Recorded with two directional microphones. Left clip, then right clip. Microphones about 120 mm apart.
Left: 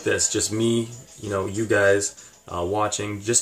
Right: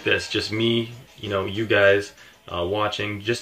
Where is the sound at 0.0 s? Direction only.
20° left (ahead or behind).